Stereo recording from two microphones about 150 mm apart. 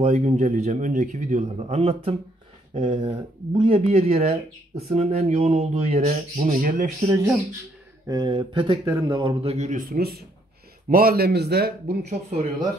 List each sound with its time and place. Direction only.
0.0 s speech: 50° right (ahead or behind)
1.6 s speech: 40° right (ahead or behind)
6.4 s speech: 60° right (ahead or behind)
8.1 s speech: 30° right (ahead or behind); by 10.2 s 90° right
10.9 s speech: 80° right
12.1 s speech: 45° right (ahead or behind)